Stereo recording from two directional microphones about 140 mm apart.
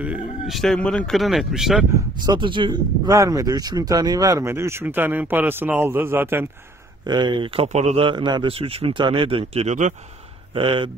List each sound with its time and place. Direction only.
0.0 s a man's voice: 10° right (ahead or behind)
0.6 s speech: 5° left (ahead or behind)
2.2 s speech: 35° right (ahead or behind); by 6.4 s 15° right (ahead or behind)
7.1 s speech: 30° right (ahead or behind)
7.6 s speech: 55° right (ahead or behind); by 10.9 s 35° right (ahead or behind)